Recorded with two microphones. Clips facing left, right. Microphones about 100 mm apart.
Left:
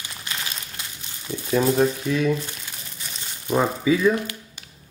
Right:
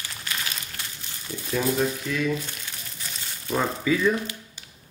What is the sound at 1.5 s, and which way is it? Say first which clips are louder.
Speech: left 5 dB; 30° left (ahead or behind).